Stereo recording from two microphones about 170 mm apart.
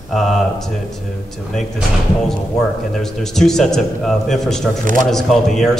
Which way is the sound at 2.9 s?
Centre (ahead or behind).